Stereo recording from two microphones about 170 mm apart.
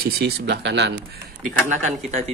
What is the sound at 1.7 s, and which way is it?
Speech, 45° right (ahead or behind).